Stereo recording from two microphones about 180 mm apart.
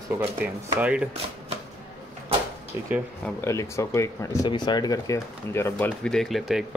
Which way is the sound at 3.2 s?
15° left (ahead or behind).